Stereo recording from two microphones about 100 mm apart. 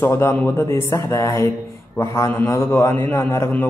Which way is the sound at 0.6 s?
30° left (ahead or behind).